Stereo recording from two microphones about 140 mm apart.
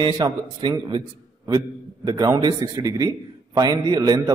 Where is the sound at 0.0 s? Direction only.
30° right (ahead or behind).